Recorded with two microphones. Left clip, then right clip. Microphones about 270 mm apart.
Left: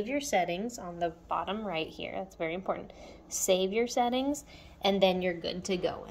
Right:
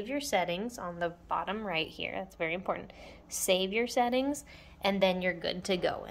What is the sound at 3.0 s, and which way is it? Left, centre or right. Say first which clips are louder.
Speech: left 3 dB; centre.